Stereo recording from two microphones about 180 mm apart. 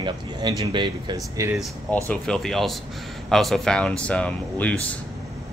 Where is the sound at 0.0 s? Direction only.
25° right (ahead or behind).